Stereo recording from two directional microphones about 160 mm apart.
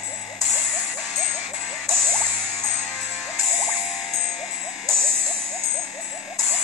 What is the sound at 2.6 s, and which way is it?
Music, 45° left (ahead or behind).